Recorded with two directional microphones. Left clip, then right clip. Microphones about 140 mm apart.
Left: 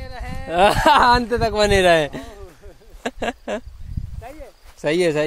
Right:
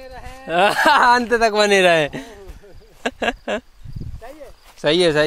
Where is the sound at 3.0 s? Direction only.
Centre (ahead or behind).